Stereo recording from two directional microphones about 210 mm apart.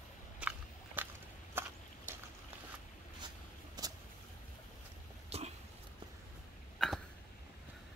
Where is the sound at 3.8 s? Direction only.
20° right (ahead or behind).